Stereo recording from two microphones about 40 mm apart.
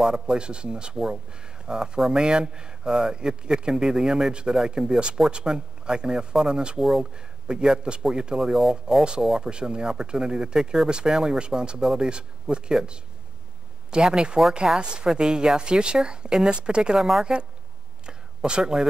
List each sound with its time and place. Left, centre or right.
0.0 s speech: centre
13.8 s speech: centre
18.0 s a sound: right